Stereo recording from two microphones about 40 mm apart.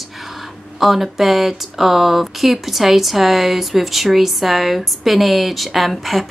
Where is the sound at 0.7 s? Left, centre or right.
Centre.